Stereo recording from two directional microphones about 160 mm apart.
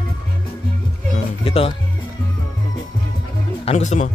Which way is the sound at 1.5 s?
35° left (ahead or behind).